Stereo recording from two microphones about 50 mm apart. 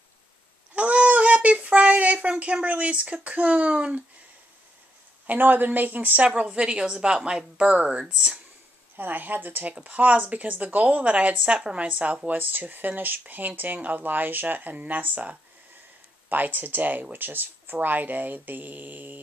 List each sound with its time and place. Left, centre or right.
0.7 s a sound: right
2.1 s a woman's voice: right
5.2 s a woman's voice: right; by 8.4 s centre
8.9 s speech: right